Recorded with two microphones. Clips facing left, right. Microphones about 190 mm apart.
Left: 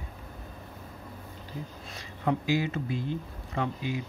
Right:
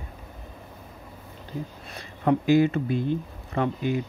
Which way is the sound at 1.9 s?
55° right (ahead or behind).